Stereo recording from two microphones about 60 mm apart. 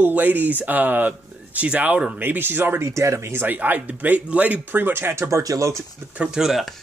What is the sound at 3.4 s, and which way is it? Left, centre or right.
Speech, right.